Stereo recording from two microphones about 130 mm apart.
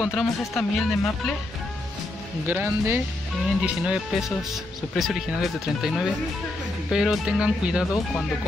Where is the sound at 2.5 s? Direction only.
15° right (ahead or behind).